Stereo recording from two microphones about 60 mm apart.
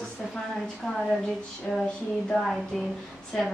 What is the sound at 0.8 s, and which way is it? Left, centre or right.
A woman's voice, centre.